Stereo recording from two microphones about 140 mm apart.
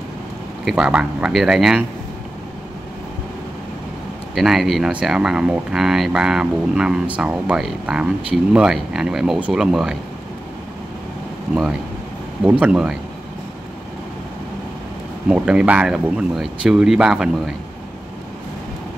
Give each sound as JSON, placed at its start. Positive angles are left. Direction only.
{"t": 0.7, "sound": "speech", "side_deg": -5}
{"t": 4.4, "sound": "speech", "side_deg": 0}
{"t": 12.4, "sound": "speech", "side_deg": -10}
{"t": 15.2, "sound": "speech", "side_deg": -5}